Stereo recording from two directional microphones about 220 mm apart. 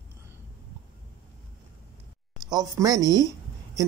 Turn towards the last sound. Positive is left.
turn(degrees=-15)  # may be behind; listen again after turning